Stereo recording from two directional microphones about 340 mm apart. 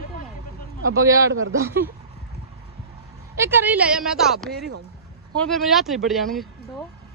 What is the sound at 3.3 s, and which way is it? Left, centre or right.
A woman's voice, centre.